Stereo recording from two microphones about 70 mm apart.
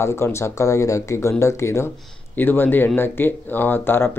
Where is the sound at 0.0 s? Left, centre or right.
Left.